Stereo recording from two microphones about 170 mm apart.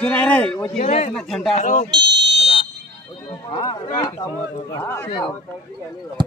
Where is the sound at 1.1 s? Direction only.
5° left (ahead or behind).